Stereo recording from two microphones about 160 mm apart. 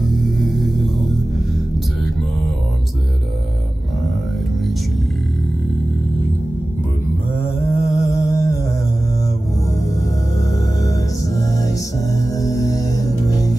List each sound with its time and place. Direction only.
0.4 s music: centre (ahead or behind)
7.3 s mantra: 15° left (ahead or behind)
9.8 s music: 20° left (ahead or behind)